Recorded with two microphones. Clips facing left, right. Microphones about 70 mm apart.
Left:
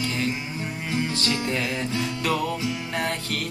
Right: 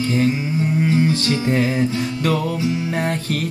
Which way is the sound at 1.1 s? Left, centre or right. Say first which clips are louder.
Right 7 dB; right.